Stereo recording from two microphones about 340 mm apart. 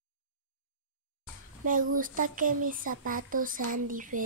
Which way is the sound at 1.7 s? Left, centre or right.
Right.